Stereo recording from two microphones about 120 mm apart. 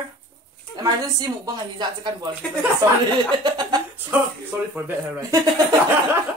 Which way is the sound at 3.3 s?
35° right (ahead or behind).